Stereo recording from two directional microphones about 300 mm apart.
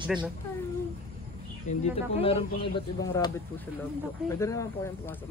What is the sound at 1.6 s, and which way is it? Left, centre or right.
Speech, left.